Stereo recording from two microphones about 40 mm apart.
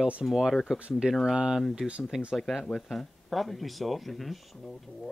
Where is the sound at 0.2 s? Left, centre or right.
Centre.